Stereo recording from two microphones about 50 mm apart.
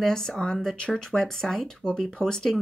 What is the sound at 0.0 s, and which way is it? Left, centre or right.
Speech, centre.